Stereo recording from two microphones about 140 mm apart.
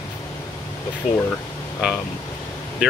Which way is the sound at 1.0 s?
70° left (ahead or behind).